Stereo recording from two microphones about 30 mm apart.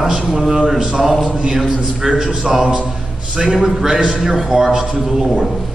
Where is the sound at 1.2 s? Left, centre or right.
Right.